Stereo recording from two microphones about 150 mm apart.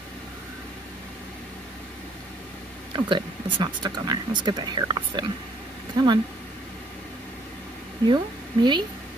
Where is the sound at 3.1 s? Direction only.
35° right (ahead or behind).